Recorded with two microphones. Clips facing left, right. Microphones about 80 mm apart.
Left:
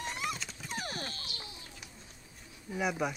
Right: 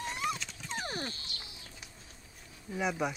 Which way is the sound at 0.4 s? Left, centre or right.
Centre.